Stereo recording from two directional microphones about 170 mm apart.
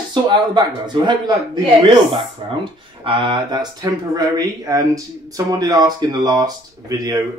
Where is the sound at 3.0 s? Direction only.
30° right (ahead or behind).